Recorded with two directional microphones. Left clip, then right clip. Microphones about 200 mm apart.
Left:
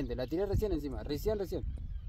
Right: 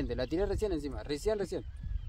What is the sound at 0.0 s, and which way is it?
Speech, centre (ahead or behind).